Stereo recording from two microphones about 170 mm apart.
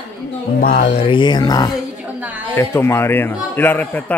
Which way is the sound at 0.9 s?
30° left (ahead or behind).